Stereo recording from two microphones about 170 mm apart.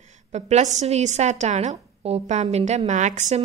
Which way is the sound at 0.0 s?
40° right (ahead or behind).